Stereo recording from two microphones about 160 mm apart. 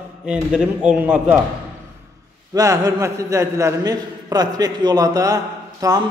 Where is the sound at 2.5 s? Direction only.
20° right (ahead or behind).